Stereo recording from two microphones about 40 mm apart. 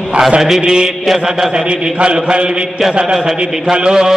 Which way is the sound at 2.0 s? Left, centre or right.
Right.